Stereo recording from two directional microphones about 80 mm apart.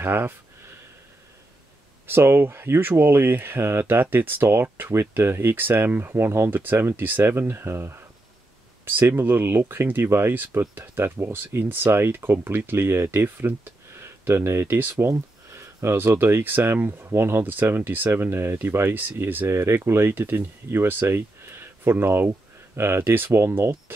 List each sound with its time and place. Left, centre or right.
0.0 s speech: right
2.0 s speech: right